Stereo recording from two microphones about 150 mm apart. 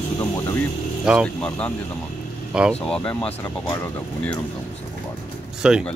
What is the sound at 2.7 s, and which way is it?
Speech, 5° left (ahead or behind).